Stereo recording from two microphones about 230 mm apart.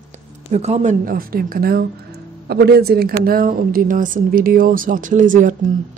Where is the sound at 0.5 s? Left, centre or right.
Right.